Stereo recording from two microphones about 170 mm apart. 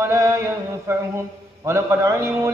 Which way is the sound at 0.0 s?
20° right (ahead or behind).